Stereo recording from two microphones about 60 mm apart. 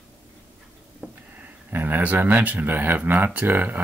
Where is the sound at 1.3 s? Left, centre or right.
Right.